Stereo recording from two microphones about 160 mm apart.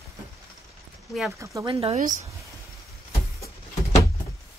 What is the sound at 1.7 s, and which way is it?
Speech, 40° right (ahead or behind).